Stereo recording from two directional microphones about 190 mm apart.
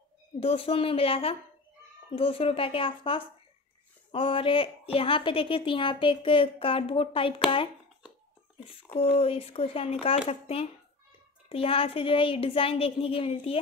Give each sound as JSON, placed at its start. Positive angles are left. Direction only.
{"t": 0.4, "sound": "a woman's voice", "side_deg": 30}